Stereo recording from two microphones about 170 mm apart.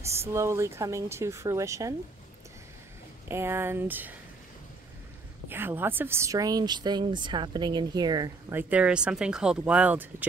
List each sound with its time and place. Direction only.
0.3 s speech: 15° right (ahead or behind)
3.3 s speech: 15° right (ahead or behind)
5.5 s speech: 10° right (ahead or behind)
8.5 s speech: 10° right (ahead or behind)